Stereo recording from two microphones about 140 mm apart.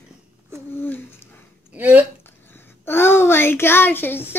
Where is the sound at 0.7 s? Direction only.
15° left (ahead or behind).